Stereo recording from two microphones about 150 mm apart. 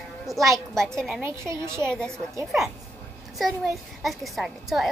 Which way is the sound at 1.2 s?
20° right (ahead or behind).